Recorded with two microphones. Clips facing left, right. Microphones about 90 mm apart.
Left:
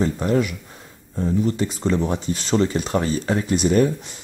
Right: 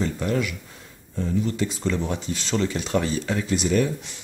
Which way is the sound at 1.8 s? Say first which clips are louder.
Left 4 dB; 25° left (ahead or behind).